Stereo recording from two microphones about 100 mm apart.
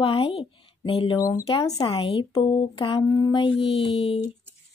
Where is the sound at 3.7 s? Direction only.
80° left.